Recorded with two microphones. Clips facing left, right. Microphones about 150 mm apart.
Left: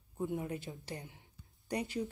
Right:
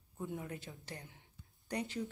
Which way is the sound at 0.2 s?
20° left (ahead or behind).